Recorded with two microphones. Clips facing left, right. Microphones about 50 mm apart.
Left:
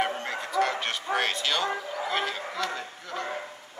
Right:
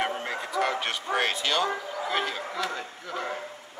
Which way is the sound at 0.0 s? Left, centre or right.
Centre.